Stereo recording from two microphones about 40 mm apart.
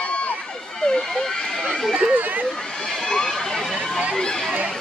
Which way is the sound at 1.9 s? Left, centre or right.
Right.